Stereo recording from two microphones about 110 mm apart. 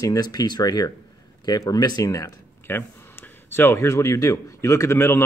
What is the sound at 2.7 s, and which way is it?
Speech, 20° left (ahead or behind).